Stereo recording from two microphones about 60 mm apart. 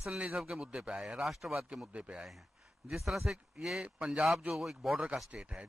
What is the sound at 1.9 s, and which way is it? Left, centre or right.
Speech, centre.